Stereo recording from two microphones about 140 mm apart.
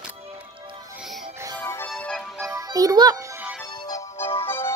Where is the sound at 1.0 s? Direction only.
Centre (ahead or behind).